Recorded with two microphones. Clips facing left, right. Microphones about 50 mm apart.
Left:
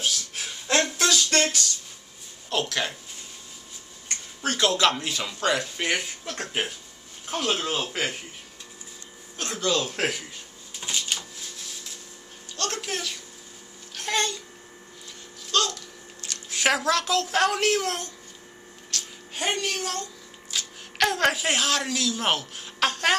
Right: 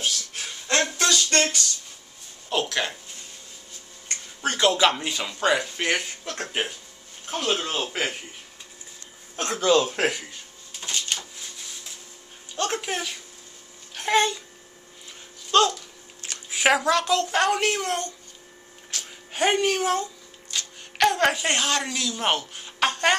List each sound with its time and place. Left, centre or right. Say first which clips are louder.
0.0 s a sound: even; centre
4.1 s a woman's voice: right 1 dB; centre
9.4 s speech: right 6 dB; centre
10.8 s a sound: even; centre
12.5 s speech: right 3 dB; centre
15.5 s speech: right 6 dB; right
16.4 s a woman's voice: right 3 dB; centre
18.9 s a sound: left 1 dB; centre
20.5 s a woman's voice: right 1 dB; centre